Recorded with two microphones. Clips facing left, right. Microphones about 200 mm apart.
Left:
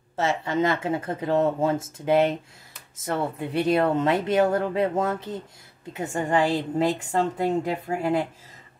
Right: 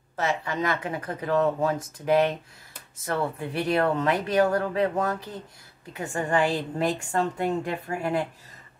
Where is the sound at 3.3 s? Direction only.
20° left (ahead or behind).